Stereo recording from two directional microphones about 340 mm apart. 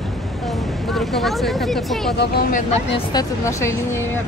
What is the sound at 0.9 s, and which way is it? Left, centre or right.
Speech, centre.